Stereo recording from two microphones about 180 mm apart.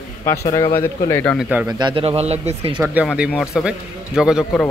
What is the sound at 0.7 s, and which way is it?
Speech, 15° left (ahead or behind).